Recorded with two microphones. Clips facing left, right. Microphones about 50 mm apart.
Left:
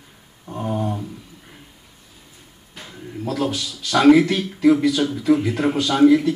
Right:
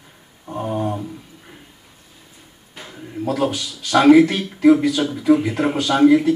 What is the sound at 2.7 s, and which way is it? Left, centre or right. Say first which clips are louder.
Speech: right 3 dB; centre.